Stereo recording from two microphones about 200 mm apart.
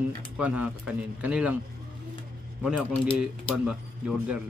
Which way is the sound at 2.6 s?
5° right (ahead or behind).